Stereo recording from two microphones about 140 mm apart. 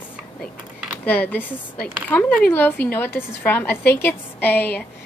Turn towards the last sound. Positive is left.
turn(degrees=15)  # may be behind; listen again after turning